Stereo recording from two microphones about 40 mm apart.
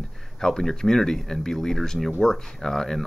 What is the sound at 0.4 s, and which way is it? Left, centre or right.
Speech, centre.